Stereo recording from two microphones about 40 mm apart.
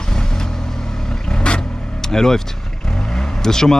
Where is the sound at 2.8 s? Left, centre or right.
Centre.